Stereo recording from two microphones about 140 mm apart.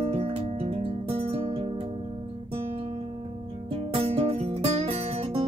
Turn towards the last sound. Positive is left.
turn(degrees=-45)  # may be behind; listen again after turning